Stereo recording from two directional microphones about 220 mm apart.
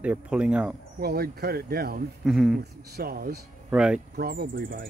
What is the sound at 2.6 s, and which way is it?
Speech, 45° right (ahead or behind).